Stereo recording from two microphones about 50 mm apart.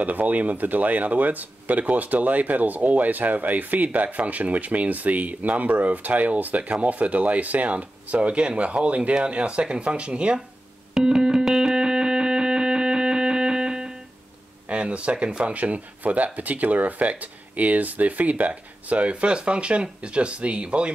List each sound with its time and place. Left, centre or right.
0.0 s speech: right
11.0 s music: centre
14.7 s speech: right